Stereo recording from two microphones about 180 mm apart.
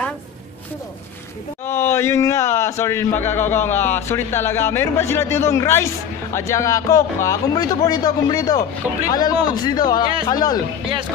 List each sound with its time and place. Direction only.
1.7 s a man's voice: 15° left (ahead or behind)